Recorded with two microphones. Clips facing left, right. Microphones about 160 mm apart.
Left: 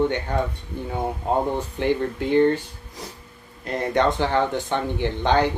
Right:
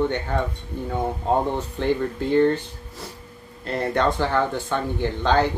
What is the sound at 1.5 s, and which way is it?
Speech, 15° left (ahead or behind).